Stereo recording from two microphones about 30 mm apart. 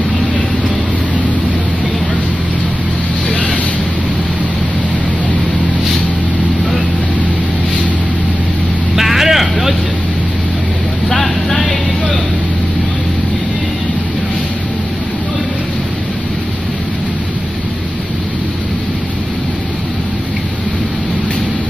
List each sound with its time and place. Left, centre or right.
3.3 s vehicle: left
8.9 s vehicle: centre
11.1 s vehicle: centre